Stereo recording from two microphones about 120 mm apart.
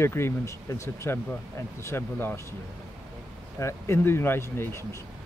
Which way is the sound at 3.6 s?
25° left (ahead or behind).